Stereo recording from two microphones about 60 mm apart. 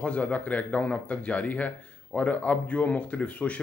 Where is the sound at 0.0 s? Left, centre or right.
Left.